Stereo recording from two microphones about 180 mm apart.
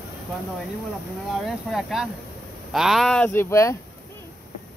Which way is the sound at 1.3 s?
Centre (ahead or behind).